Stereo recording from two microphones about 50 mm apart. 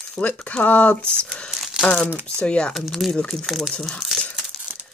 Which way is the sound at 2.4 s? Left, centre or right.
Left.